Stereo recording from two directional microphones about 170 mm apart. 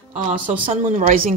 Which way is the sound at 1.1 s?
55° right (ahead or behind).